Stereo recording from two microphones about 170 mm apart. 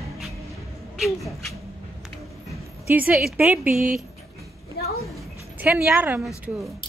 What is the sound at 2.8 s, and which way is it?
A woman's voice, 10° right (ahead or behind).